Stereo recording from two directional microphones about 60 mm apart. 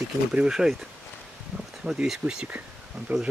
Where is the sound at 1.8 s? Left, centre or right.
Centre.